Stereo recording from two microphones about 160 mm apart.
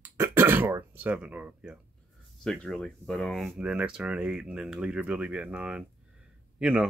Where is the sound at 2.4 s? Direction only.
5° left (ahead or behind).